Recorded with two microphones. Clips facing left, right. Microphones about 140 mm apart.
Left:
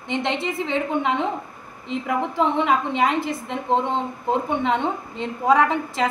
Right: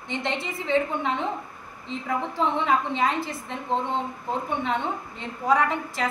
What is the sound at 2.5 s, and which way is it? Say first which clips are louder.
A woman's voice: left 3 dB; 15° left (ahead or behind).